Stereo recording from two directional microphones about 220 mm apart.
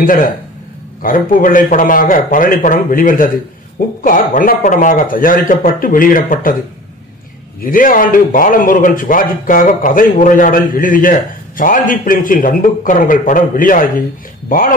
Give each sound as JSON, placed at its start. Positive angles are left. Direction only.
{"t": 0.0, "sound": "a man's voice", "side_deg": 40}
{"t": 7.6, "sound": "a man's voice", "side_deg": 40}